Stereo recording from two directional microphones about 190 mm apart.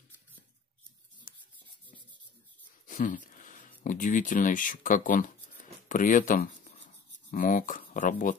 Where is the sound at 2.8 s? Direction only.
45° left (ahead or behind).